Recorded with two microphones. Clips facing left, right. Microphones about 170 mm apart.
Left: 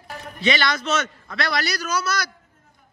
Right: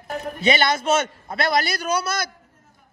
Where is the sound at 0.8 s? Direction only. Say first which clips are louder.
Right 4 dB; 50° right (ahead or behind).